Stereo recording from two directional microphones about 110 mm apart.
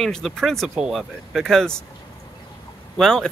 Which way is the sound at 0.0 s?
5° left (ahead or behind).